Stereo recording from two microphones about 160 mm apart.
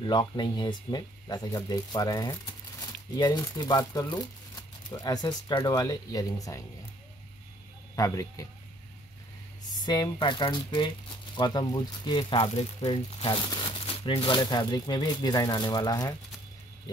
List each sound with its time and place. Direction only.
0.0 s speech: 25° left (ahead or behind)
7.9 s speech: 20° left (ahead or behind)
9.7 s speech: 25° left (ahead or behind)